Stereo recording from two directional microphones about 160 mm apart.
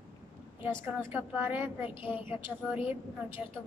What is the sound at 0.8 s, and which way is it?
A woman's voice, 15° right (ahead or behind).